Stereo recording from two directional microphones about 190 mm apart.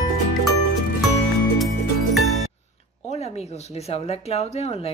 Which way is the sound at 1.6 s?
Centre (ahead or behind).